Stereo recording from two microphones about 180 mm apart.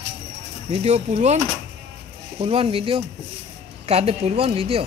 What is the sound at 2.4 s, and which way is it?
A woman's voice, 30° right (ahead or behind).